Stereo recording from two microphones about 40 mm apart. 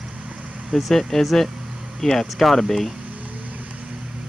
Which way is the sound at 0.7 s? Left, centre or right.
Centre.